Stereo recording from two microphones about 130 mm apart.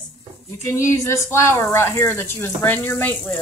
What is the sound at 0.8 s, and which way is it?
Speech, 20° left (ahead or behind).